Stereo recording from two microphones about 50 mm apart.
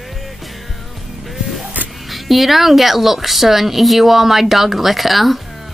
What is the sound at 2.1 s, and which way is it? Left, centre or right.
A woman's voice, centre.